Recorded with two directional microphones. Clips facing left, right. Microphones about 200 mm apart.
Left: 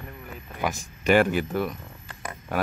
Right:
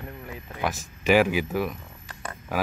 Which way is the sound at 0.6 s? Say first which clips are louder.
Left 1 dB; 5° right (ahead or behind).